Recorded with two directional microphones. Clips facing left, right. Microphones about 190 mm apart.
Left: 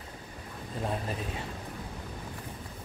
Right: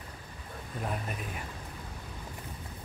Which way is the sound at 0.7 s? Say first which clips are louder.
Left 3 dB; 30° left (ahead or behind).